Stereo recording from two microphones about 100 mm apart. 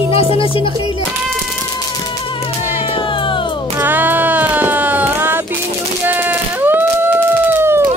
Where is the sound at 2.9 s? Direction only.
60° left (ahead or behind).